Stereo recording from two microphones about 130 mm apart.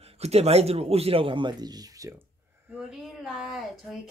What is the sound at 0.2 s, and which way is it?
Speech, 55° right (ahead or behind).